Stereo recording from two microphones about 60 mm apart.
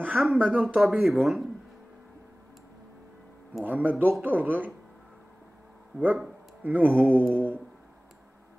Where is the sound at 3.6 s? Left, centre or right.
Right.